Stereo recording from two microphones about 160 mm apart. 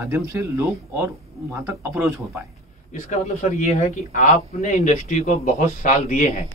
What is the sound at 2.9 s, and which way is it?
Speech, 45° left (ahead or behind).